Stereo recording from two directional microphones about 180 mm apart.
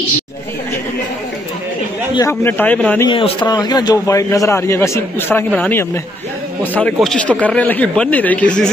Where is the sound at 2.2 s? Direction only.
15° left (ahead or behind).